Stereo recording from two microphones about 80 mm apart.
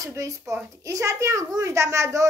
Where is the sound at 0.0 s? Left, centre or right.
Right.